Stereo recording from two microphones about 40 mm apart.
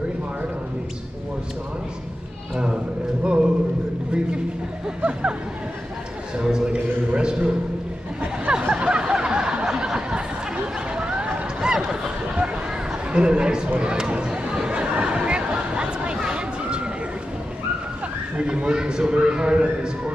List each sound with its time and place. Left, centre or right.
3.3 s a man's voice: right
6.3 s a man's voice: centre
8.5 s snicker: right
11.7 s a sound: centre
13.1 s a man's voice: right
13.7 s chatter: right
18.3 s a man's voice: right